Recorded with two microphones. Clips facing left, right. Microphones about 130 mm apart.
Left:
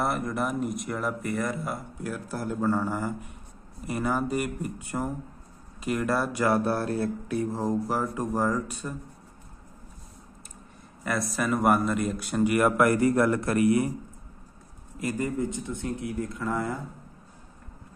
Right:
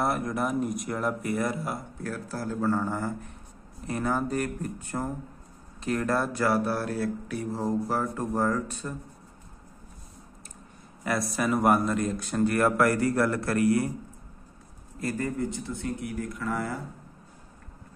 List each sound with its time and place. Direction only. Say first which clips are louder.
0.0 s speech: even; centre (ahead or behind)
2.0 s speech: left 1 dB; 15° left (ahead or behind)
11.1 s speech: even; centre (ahead or behind); by 13.9 s 20° left (ahead or behind)
15.0 s speech: left 1 dB; 15° left (ahead or behind)